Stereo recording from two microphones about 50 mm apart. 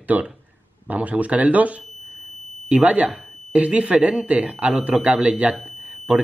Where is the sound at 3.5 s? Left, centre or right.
Right.